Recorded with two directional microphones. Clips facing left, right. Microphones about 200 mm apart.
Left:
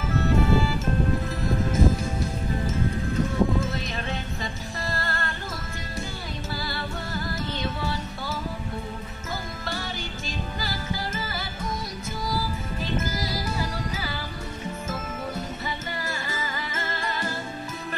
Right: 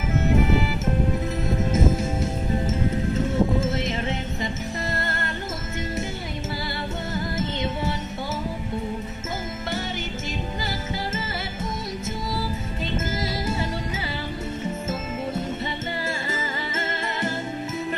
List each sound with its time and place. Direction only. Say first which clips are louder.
0.1 s music: right 1 dB; 20° right (ahead or behind)
1.7 s music: right 2 dB; 20° right (ahead or behind)
7.2 s music: right 4 dB; 20° right (ahead or behind)